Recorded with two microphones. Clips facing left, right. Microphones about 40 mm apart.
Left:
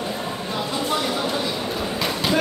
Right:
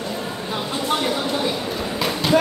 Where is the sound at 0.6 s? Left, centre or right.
Centre.